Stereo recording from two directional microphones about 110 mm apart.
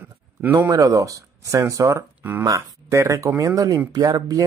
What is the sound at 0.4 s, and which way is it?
Speech, 15° right (ahead or behind).